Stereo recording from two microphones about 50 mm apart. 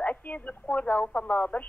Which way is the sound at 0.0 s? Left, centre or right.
Left.